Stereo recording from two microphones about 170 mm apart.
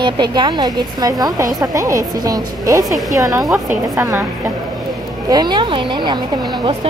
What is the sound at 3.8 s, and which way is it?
A woman's voice, 20° right (ahead or behind).